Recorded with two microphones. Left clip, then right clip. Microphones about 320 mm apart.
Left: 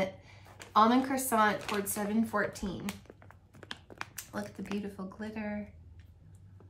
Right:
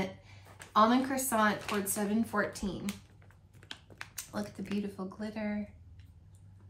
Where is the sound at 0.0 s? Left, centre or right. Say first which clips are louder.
Left 4 dB; centre.